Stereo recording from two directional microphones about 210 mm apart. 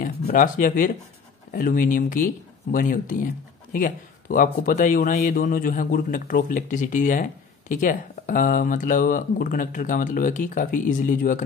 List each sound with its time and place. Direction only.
0.0 s speech: 40° left (ahead or behind)